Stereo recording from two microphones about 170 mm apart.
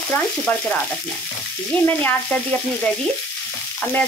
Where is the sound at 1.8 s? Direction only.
10° left (ahead or behind).